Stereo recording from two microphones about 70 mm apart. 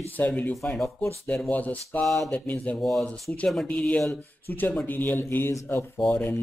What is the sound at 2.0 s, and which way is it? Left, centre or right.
Speech, centre.